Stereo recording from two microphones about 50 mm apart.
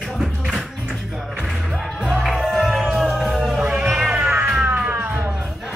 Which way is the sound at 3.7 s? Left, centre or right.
Centre.